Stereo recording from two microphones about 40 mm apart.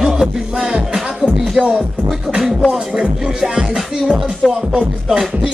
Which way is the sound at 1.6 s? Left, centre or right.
Right.